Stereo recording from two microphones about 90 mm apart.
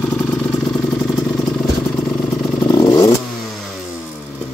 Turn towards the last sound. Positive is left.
turn(degrees=45)  # may be behind; listen again after turning